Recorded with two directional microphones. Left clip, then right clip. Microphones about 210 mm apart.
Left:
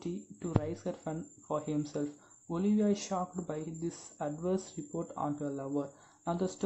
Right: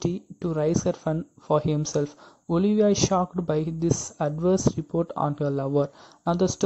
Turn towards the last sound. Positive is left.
turn(degrees=-35)  # may be behind; listen again after turning